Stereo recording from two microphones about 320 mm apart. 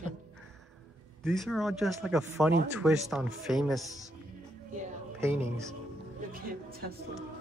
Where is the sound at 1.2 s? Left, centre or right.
Centre.